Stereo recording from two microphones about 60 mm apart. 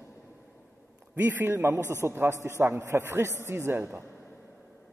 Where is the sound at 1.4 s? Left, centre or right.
Right.